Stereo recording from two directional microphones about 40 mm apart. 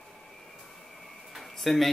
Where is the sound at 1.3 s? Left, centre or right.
Centre.